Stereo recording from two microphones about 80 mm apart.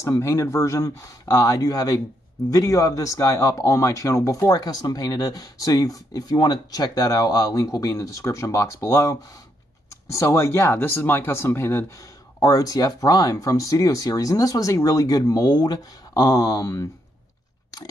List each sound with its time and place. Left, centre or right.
0.0 s speech: left
12.4 s speech: left